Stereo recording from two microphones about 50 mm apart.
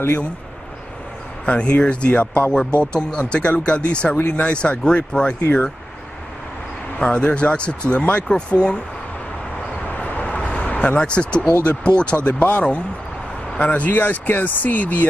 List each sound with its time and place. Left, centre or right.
1.4 s speech: left
2.8 s speech: centre
7.0 s speech: left
9.9 s vehicle: left
11.0 s speech: left
13.9 s speech: left